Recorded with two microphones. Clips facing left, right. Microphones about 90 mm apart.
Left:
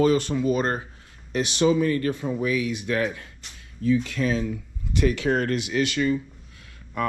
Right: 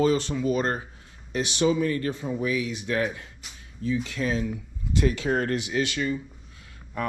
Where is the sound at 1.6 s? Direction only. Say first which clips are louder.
Left 3 dB; 45° left (ahead or behind).